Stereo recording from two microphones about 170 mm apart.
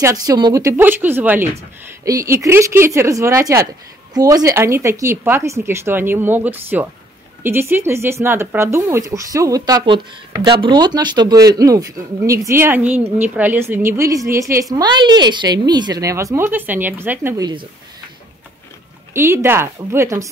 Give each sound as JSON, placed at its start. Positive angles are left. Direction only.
{"t": 0.0, "sound": "speech", "side_deg": -20}
{"t": 19.1, "sound": "speech", "side_deg": -15}